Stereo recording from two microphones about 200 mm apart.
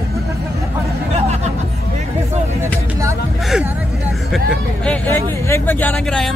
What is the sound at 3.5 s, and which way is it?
Speech, centre (ahead or behind).